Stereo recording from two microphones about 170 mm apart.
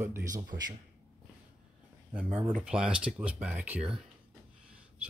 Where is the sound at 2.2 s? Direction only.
35° right (ahead or behind).